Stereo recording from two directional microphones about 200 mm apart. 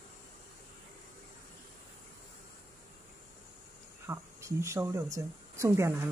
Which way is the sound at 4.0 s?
15° right (ahead or behind).